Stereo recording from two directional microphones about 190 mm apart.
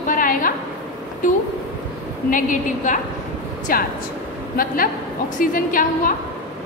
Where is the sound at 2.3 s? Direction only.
45° left (ahead or behind).